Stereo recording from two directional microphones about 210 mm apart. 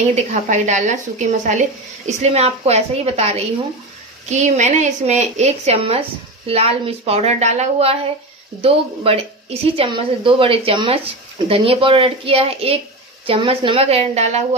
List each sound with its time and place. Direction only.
0.0 s a woman's voice: 35° right (ahead or behind)